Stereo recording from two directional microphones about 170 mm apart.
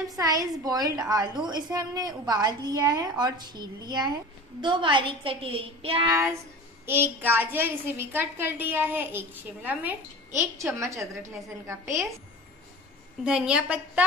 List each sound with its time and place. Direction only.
0.2 s a woman's voice: 20° right (ahead or behind)
6.0 s a woman's voice: 15° right (ahead or behind)
13.2 s a woman's voice: 5° right (ahead or behind)